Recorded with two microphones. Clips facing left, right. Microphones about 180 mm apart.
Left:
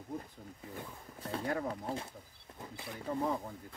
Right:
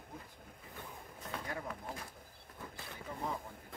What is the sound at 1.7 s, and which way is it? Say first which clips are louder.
Speech: left 6 dB; 30° left (ahead or behind).